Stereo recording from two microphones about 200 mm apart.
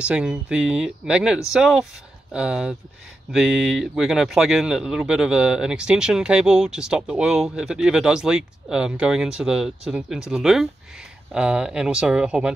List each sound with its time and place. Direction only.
0.0 s speech: 5° right (ahead or behind)